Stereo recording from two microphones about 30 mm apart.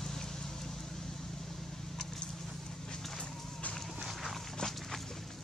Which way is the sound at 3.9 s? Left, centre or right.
Centre.